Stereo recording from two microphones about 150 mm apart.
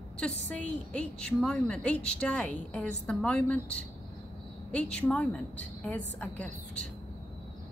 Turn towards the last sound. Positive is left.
turn(degrees=10)  # may be behind; listen again after turning